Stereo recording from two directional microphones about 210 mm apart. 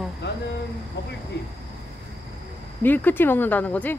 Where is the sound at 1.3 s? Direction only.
55° left (ahead or behind).